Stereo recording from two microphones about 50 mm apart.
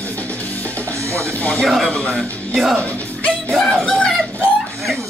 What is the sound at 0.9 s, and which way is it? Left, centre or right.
Music, right.